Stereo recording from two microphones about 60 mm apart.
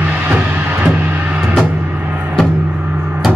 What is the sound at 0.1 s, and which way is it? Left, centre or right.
Music, right.